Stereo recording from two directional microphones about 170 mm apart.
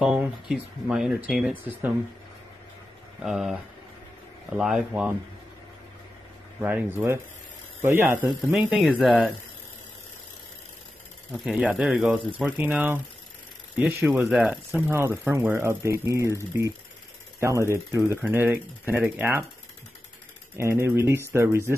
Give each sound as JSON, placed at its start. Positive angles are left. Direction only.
{"t": 0.0, "sound": "speech", "side_deg": -5}
{"t": 3.2, "sound": "speech", "side_deg": 0}
{"t": 4.6, "sound": "speech", "side_deg": -5}
{"t": 6.6, "sound": "speech", "side_deg": -10}
{"t": 11.3, "sound": "speech", "side_deg": -5}
{"t": 20.5, "sound": "speech", "side_deg": -15}